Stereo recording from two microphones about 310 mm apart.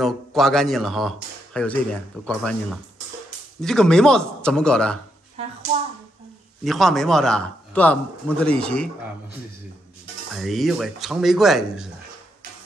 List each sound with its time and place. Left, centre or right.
0.0 s speech: centre
5.4 s a sound: centre
6.6 s speech: centre
10.3 s speech: centre